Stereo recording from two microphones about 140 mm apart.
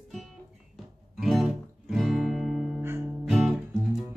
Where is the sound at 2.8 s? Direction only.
20° right (ahead or behind).